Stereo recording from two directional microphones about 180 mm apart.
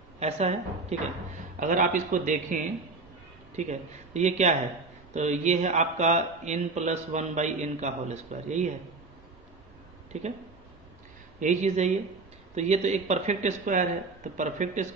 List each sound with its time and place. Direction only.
0.2 s a man's voice: 35° right (ahead or behind)
10.1 s speech: 40° right (ahead or behind)
11.3 s a man's voice: 40° right (ahead or behind)